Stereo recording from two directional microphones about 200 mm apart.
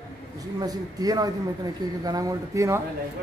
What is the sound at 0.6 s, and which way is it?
A man's voice, 20° right (ahead or behind).